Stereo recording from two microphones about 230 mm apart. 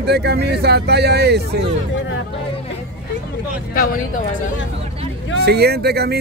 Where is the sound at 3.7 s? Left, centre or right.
Left.